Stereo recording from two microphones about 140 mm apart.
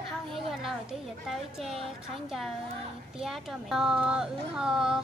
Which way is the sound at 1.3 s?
Centre (ahead or behind).